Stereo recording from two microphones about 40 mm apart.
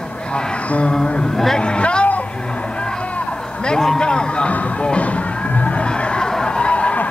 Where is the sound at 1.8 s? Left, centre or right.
Left.